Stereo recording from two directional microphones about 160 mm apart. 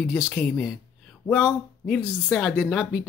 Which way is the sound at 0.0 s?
10° left (ahead or behind).